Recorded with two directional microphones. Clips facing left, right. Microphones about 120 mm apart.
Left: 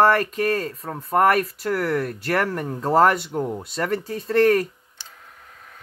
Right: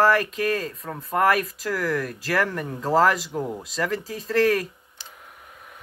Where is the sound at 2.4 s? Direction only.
30° left (ahead or behind).